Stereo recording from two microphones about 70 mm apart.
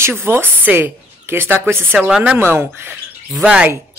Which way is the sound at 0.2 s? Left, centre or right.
Right.